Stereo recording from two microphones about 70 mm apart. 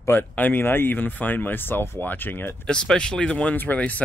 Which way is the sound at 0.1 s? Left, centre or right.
Left.